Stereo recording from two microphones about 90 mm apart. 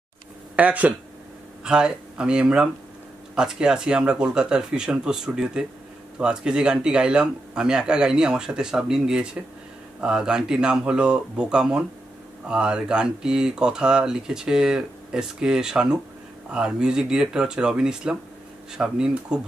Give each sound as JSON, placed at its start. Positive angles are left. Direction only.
{"t": 0.6, "sound": "speech", "side_deg": -15}